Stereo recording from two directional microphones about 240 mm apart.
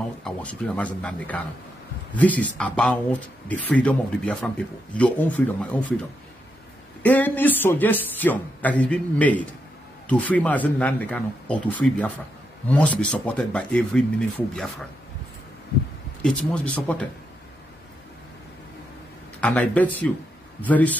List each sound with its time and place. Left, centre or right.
0.2 s speech: centre
7.0 s a man's voice: centre
16.2 s speech: centre
19.4 s a man's voice: centre